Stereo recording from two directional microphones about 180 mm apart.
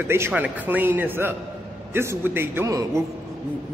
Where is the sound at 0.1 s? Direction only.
10° right (ahead or behind).